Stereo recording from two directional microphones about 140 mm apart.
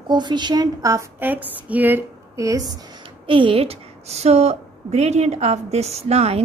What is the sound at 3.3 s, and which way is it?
Speech, 40° right (ahead or behind).